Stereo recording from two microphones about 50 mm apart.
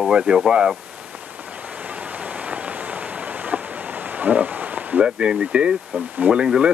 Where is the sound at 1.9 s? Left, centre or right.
Right.